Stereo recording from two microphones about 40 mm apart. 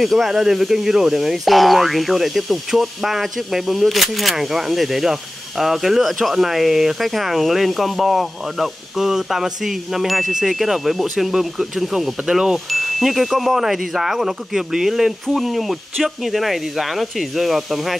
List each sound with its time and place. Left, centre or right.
0.0 s speech: centre
0.3 s speech: centre
12.3 s speech: centre
12.7 s speech: centre